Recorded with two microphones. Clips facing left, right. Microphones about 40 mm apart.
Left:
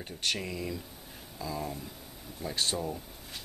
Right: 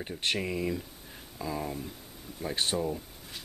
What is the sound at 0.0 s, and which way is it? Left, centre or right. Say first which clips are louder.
Speech: right 3 dB; right.